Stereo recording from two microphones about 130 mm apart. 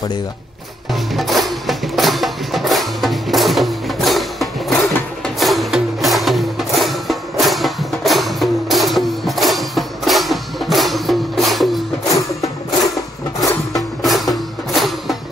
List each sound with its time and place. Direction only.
1.1 s music: centre (ahead or behind)
12.1 s music: 25° left (ahead or behind)
13.4 s music: centre (ahead or behind)